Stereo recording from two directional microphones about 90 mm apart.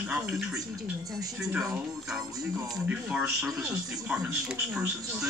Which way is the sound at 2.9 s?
10° right (ahead or behind).